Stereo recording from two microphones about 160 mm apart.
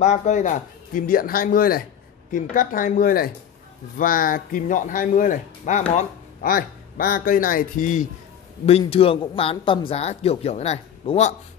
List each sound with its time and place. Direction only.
0.0 s speech: 50° left (ahead or behind)
5.9 s speech: 65° left (ahead or behind)
8.6 s speech: 40° left (ahead or behind)